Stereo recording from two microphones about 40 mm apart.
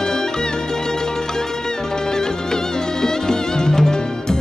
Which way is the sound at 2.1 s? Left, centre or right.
Centre.